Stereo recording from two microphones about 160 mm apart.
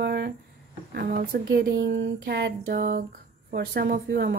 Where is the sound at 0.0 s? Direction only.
90° right.